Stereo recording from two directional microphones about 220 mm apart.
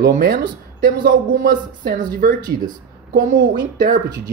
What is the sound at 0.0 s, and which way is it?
Speech, 40° right (ahead or behind).